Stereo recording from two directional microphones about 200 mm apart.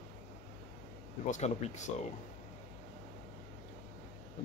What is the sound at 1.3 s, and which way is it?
Speech, 35° left (ahead or behind).